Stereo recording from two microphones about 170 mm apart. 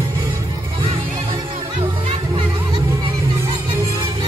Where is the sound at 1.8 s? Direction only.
35° right (ahead or behind).